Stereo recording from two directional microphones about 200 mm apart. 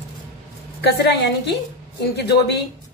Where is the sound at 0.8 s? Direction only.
55° left (ahead or behind).